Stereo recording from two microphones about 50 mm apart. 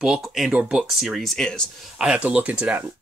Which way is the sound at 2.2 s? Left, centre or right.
Right.